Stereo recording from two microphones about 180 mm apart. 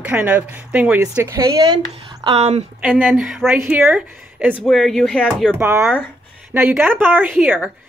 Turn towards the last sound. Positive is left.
turn(degrees=-10)  # may be behind; listen again after turning